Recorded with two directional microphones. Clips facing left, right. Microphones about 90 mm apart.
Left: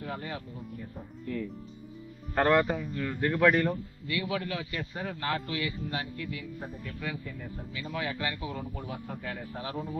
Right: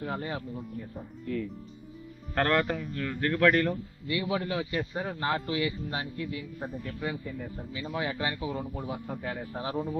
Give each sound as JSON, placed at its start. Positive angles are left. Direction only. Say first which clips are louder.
{"t": 0.0, "sound": "speech", "louder": "right 3 dB", "side_deg": -35}
{"t": 2.3, "sound": "a man's voice", "louder": "left 2 dB", "side_deg": 10}
{"t": 4.1, "sound": "a man's voice", "louder": "right 2 dB", "side_deg": -30}